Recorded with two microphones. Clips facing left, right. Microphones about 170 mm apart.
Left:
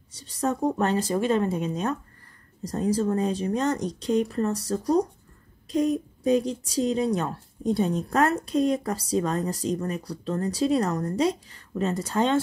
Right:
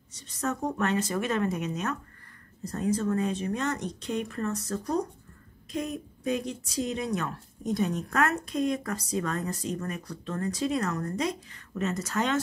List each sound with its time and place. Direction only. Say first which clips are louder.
0.1 s a woman's voice: left 5 dB; 35° left (ahead or behind)